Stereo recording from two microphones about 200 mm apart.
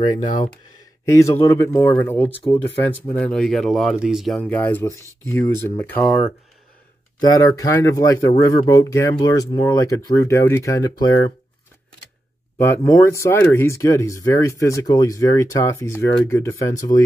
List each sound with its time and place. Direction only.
0.2 s speech: 40° left (ahead or behind)
1.0 s speech: 15° left (ahead or behind)
2.3 s speech: 25° left (ahead or behind)
2.8 s speech: 10° left (ahead or behind)
12.5 s speech: 15° left (ahead or behind)